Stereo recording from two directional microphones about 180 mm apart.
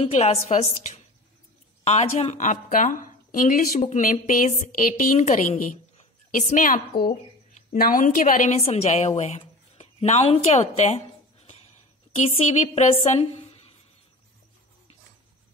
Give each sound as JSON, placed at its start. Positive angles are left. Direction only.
{"t": 0.0, "sound": "a woman's voice", "side_deg": 35}